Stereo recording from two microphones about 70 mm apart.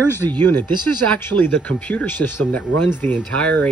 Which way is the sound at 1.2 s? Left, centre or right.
Left.